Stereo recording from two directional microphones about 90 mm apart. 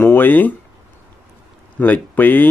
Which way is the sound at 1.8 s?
20° left (ahead or behind).